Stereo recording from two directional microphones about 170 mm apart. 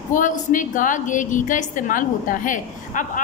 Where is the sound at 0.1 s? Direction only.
50° left (ahead or behind).